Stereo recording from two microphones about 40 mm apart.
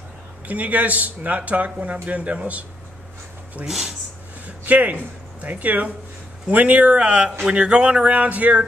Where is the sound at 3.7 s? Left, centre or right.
Centre.